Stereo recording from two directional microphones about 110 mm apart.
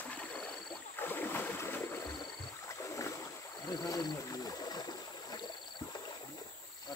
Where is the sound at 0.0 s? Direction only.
10° left (ahead or behind).